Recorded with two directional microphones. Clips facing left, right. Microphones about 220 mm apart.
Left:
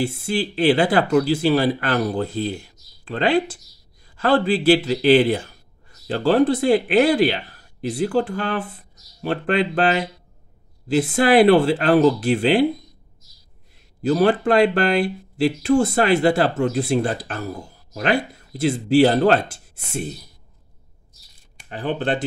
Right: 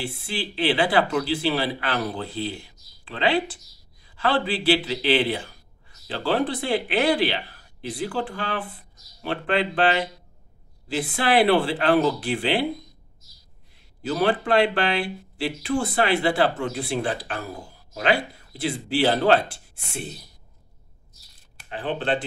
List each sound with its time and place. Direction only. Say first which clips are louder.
0.0 s a man's voice: left 8 dB; 45° left (ahead or behind)
14.0 s a man's voice: left 6 dB; 40° left (ahead or behind)
21.6 s a man's voice: left 3 dB; 45° left (ahead or behind)